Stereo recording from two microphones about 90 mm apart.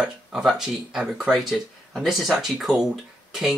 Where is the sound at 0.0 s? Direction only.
5° right (ahead or behind).